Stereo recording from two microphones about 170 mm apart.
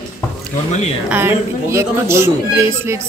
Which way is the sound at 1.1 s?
15° right (ahead or behind).